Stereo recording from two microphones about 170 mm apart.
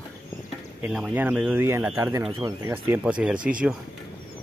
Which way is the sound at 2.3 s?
30° right (ahead or behind).